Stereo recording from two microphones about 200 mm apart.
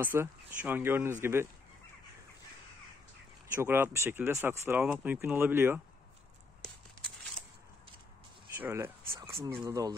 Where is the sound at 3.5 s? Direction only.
10° right (ahead or behind).